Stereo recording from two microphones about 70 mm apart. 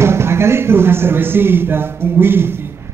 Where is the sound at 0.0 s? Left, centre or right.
Right.